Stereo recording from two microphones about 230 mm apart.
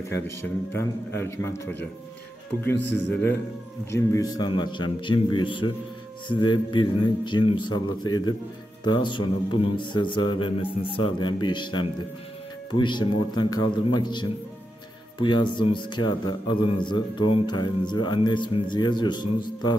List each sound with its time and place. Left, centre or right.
0.1 s a man's voice: centre